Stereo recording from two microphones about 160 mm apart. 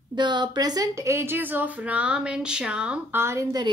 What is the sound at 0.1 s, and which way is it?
A woman's voice, 30° right (ahead or behind).